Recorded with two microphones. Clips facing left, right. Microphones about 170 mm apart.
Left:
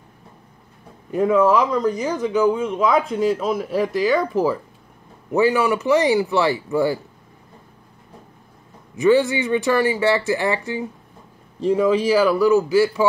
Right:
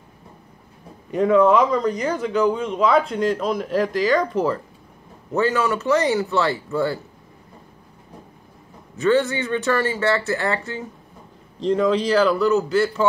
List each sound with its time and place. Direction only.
1.1 s speech: 5° left (ahead or behind)
8.9 s speech: 15° left (ahead or behind)